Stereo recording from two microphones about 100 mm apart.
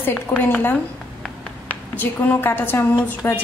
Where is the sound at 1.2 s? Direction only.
15° left (ahead or behind).